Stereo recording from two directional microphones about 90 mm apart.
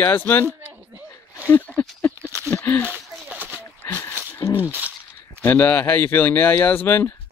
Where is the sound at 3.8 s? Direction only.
25° left (ahead or behind).